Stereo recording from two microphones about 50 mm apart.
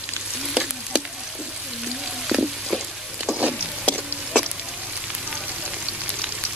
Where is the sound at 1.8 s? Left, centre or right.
Centre.